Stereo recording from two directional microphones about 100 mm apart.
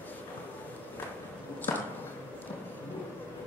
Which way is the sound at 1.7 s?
25° left (ahead or behind).